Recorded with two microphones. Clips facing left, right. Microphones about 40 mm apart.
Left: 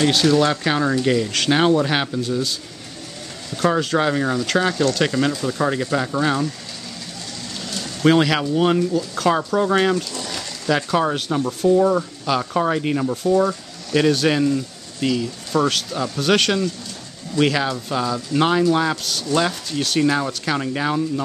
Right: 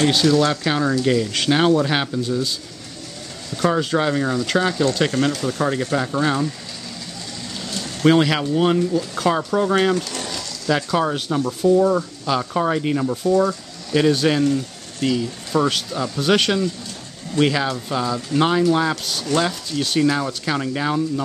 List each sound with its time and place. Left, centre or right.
0.0 s speech: centre
0.3 s speech: centre
3.5 s speech: centre
7.7 s speech: centre